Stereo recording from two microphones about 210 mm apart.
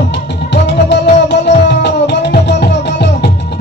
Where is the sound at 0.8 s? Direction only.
55° left (ahead or behind).